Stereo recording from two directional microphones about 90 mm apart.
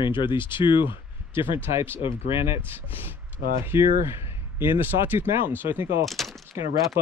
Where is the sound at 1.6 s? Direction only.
25° right (ahead or behind).